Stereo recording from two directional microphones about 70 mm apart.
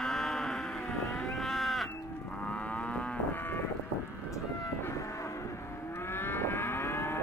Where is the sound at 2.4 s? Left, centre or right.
Centre.